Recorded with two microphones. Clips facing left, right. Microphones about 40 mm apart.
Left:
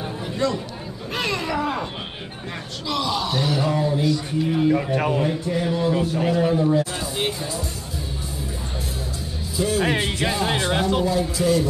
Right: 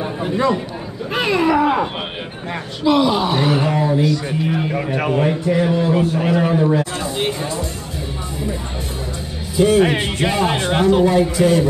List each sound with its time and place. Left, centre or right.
1.1 s a man's voice: centre; by 5.3 s right
5.3 s a man's voice: right
9.6 s a man's voice: right